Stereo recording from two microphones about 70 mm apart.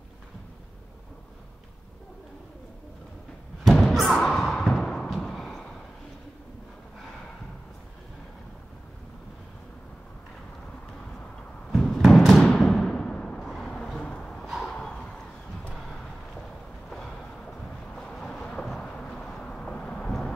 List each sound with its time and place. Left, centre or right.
3.6 s thump: centre
5.2 s a sound: centre
11.7 s music: centre
12.4 s music: centre
12.7 s a sound: centre
15.7 s vehicle: centre
17.9 s vehicle: centre